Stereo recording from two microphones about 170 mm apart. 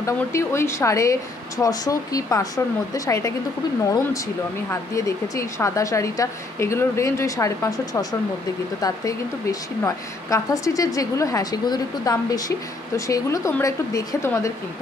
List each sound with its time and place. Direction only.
0.0 s a woman's voice: 15° left (ahead or behind)
4.6 s a woman's voice: 20° left (ahead or behind)